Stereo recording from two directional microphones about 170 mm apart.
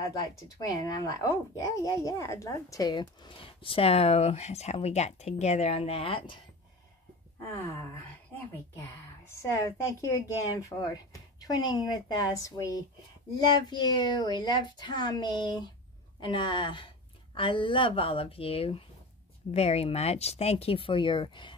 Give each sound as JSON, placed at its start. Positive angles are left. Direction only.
{"t": 0.1, "sound": "speech", "side_deg": 25}
{"t": 9.4, "sound": "speech", "side_deg": 20}